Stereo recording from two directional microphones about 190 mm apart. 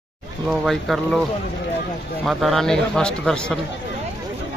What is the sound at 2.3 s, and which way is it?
A man's voice, centre (ahead or behind).